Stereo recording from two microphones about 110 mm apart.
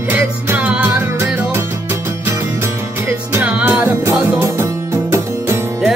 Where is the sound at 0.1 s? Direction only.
15° right (ahead or behind).